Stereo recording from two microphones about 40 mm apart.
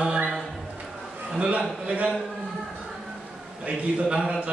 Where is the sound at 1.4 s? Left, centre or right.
Right.